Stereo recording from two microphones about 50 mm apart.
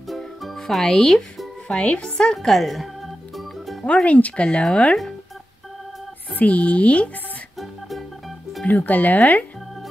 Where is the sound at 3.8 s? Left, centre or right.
Left.